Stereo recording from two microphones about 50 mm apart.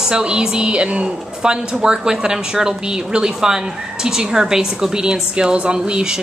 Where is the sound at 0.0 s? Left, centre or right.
Centre.